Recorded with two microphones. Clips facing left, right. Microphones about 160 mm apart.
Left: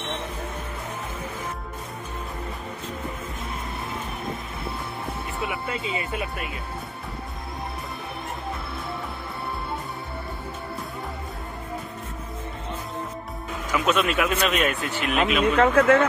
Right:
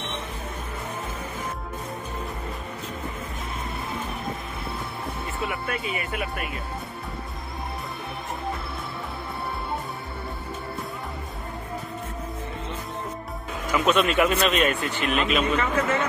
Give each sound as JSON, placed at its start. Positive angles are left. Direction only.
{"t": 5.4, "sound": "speech", "side_deg": 20}
{"t": 13.8, "sound": "speech", "side_deg": 0}
{"t": 15.5, "sound": "speech", "side_deg": 65}